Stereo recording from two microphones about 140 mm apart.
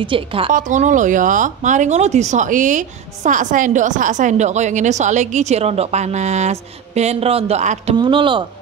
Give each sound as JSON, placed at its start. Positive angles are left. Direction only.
{"t": 0.0, "sound": "speech", "side_deg": -40}
{"t": 0.5, "sound": "a woman's voice", "side_deg": -65}
{"t": 8.0, "sound": "speech", "side_deg": -35}